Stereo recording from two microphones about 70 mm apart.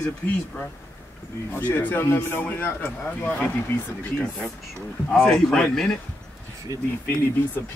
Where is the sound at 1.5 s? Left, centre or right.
Left.